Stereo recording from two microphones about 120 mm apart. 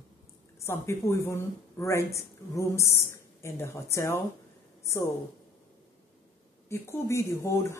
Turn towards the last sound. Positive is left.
turn(degrees=25)  # may be behind; listen again after turning